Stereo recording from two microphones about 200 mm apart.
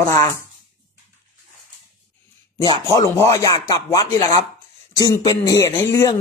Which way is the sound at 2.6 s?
20° left (ahead or behind).